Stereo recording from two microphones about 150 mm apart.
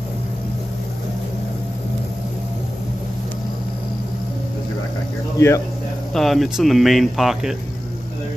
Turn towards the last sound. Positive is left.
turn(degrees=0)  # may be behind; listen again after turning